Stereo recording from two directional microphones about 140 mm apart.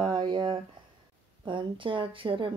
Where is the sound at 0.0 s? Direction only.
35° right (ahead or behind).